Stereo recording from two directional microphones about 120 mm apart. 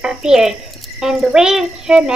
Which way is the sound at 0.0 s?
5° right (ahead or behind).